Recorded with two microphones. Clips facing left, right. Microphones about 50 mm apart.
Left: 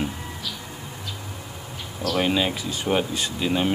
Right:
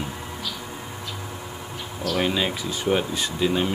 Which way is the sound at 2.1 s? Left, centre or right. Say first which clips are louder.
Left 1 dB; centre.